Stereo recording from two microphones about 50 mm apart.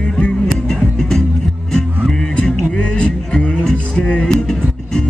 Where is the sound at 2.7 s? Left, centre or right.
Left.